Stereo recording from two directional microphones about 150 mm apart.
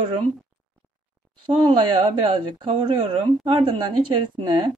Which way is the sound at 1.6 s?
30° right (ahead or behind).